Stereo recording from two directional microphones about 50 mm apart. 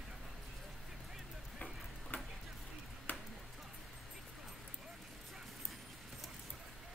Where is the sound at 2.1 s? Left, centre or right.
Left.